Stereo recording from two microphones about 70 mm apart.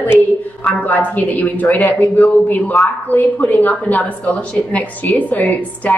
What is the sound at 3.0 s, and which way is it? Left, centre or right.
Speech, left.